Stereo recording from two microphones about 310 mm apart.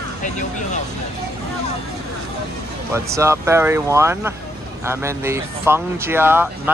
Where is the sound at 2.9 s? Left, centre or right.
Centre.